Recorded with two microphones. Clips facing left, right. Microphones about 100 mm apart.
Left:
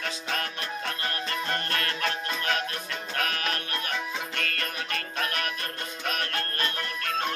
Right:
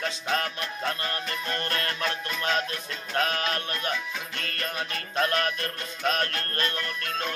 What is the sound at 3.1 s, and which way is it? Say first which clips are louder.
Music: right 4 dB; 25° right (ahead or behind).